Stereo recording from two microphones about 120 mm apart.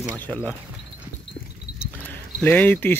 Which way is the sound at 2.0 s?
15° left (ahead or behind).